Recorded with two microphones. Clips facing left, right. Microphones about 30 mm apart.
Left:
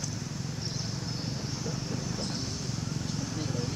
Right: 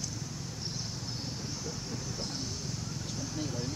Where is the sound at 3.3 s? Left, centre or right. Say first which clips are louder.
Even; left.